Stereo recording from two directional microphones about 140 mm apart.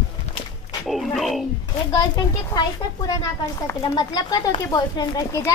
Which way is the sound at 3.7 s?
30° left (ahead or behind).